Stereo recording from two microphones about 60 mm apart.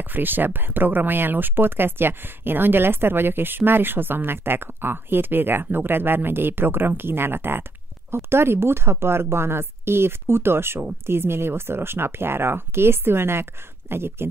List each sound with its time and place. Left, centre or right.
0.0 s a woman's voice: right